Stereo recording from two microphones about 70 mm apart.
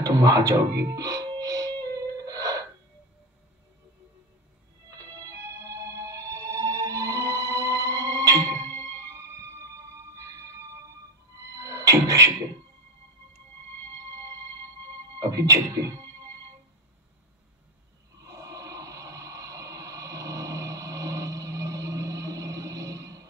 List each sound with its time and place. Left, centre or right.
0.0 s music: right
4.9 s music: right
11.5 s music: right
15.1 s speech: right
18.2 s a sound: right